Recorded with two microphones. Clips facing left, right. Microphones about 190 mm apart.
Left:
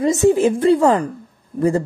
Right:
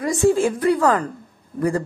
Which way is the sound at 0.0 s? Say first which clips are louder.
Left 3 dB; 20° left (ahead or behind).